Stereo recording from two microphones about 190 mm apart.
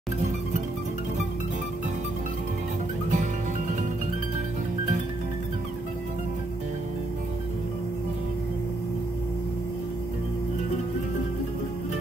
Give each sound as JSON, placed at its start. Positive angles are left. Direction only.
{"t": 3.1, "sound": "music", "side_deg": -40}